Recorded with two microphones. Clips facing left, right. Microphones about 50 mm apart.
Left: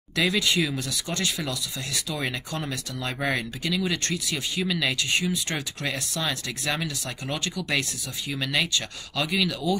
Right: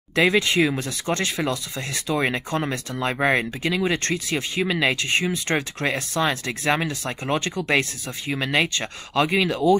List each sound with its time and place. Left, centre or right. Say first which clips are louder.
0.1 s speech: right 5 dB; right